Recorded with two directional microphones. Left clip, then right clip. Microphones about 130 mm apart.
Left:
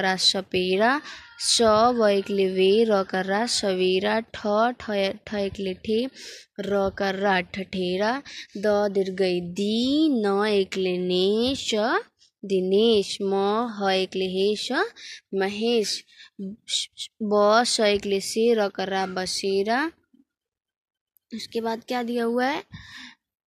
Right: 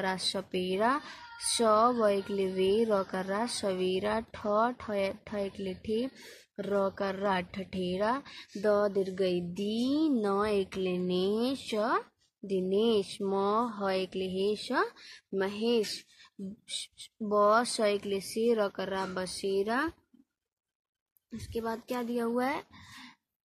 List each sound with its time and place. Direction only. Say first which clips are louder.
0.0 s speech: left 10 dB; 35° left (ahead or behind)
21.4 s speech: left 7 dB; 35° left (ahead or behind)